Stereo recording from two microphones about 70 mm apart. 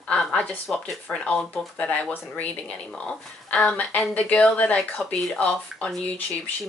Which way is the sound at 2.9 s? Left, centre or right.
Centre.